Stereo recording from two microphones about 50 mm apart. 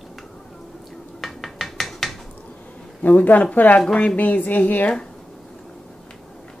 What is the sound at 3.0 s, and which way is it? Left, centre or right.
A woman's voice, left.